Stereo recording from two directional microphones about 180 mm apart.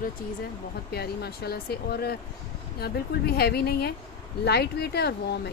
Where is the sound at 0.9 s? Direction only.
60° left (ahead or behind).